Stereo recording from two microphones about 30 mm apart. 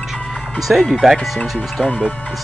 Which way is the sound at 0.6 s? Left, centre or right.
Centre.